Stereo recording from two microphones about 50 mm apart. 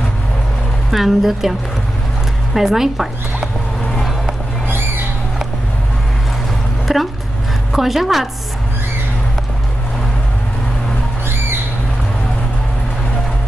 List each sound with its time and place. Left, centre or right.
0.9 s a woman's voice: centre
2.5 s speech: centre
4.6 s squawk: right
6.9 s a woman's voice: centre